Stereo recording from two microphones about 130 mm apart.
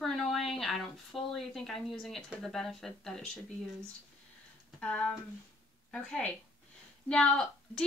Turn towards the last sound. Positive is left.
turn(degrees=5)  # may be behind; listen again after turning